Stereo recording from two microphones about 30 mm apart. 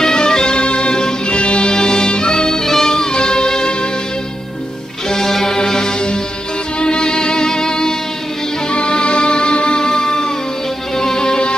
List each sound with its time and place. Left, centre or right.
0.0 s music: left
5.1 s music: centre